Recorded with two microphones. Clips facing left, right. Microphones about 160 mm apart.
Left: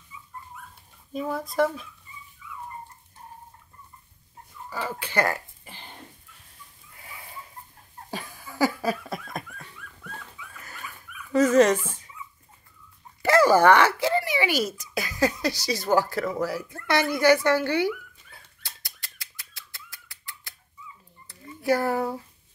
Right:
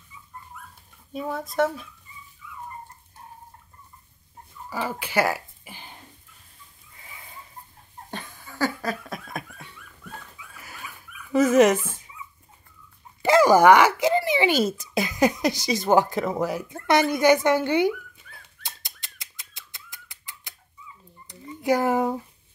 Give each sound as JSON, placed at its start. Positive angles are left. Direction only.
{"t": 1.1, "sound": "speech", "side_deg": 0}
{"t": 4.6, "sound": "speech", "side_deg": -15}
{"t": 8.1, "sound": "laughter", "side_deg": 5}
{"t": 10.6, "sound": "dog", "side_deg": -5}
{"t": 13.2, "sound": "a child's voice", "side_deg": -15}
{"t": 18.6, "sound": "bird", "side_deg": -20}
{"t": 21.3, "sound": "a sound", "side_deg": -20}